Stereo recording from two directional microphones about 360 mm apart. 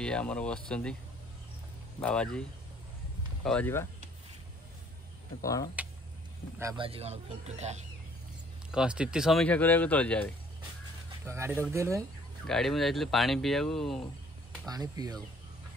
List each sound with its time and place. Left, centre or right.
0.0 s speech: centre
2.0 s speech: centre
3.4 s speech: centre
5.4 s speech: centre
6.6 s speech: centre
8.7 s speech: centre
11.2 s speech: centre
14.7 s speech: centre